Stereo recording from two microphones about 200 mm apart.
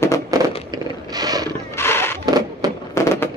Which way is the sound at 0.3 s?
15° right (ahead or behind).